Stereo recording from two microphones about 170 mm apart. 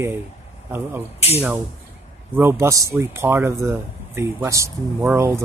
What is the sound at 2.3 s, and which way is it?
Speech, 15° right (ahead or behind).